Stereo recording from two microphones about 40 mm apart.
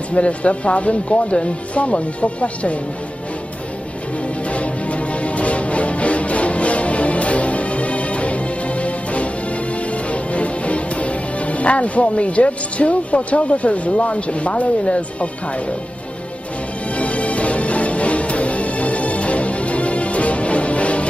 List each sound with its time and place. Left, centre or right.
0.1 s speech: left
4.5 s music: left
10.3 s speech: left
16.9 s music: left